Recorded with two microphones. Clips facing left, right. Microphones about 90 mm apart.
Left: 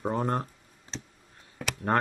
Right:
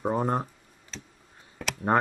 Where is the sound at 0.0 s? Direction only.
5° right (ahead or behind).